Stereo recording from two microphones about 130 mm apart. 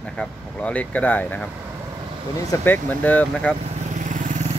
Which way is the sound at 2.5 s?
15° left (ahead or behind).